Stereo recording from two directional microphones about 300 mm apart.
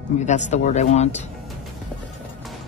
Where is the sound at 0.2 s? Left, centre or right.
Left.